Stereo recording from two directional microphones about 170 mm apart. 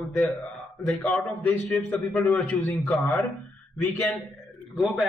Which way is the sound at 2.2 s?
15° left (ahead or behind).